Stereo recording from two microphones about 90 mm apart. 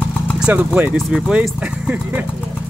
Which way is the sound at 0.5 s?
20° right (ahead or behind).